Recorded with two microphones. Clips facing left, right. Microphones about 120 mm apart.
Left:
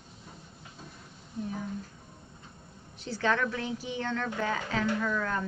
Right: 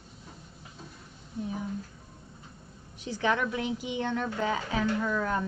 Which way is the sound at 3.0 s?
15° right (ahead or behind).